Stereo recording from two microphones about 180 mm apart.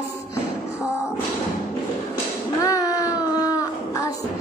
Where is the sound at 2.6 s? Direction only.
20° left (ahead or behind).